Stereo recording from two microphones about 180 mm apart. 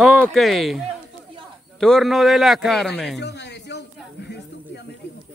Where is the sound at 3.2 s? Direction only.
70° left (ahead or behind).